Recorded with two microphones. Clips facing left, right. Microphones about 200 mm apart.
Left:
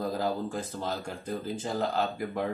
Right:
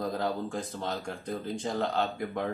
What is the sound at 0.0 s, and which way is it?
Speech, 5° left (ahead or behind).